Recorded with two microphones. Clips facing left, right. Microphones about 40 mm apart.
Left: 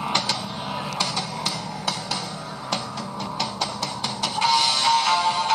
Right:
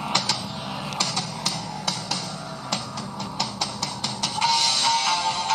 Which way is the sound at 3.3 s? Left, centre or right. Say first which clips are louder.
Left 2 dB; centre.